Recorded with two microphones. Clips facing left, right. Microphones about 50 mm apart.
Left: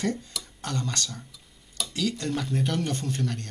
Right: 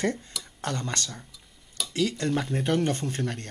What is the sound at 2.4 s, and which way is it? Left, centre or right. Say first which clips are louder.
Speech: right 2 dB; right.